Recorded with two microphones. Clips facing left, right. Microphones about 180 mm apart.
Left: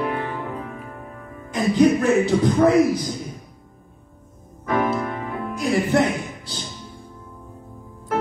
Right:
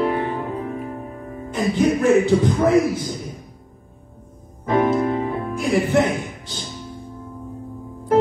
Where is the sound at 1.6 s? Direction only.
35° left (ahead or behind).